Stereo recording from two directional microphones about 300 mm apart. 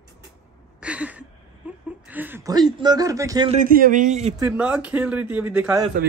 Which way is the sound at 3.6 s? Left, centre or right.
Right.